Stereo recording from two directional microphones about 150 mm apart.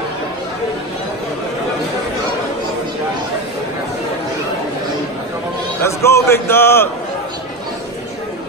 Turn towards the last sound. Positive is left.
turn(degrees=15)  # may be behind; listen again after turning